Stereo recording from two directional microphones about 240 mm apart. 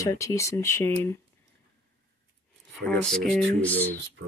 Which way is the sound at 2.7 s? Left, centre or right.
Centre.